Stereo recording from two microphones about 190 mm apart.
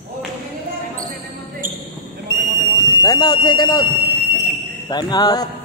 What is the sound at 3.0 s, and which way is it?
Speech, 20° left (ahead or behind).